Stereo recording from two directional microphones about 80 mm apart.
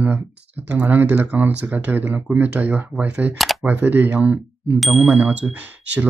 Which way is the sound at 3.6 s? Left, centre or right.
Right.